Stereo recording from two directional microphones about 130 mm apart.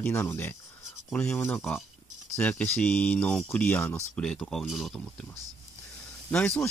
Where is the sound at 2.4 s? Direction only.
10° left (ahead or behind).